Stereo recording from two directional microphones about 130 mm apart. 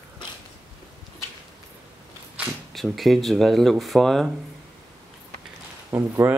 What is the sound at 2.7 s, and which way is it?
Speech, centre (ahead or behind).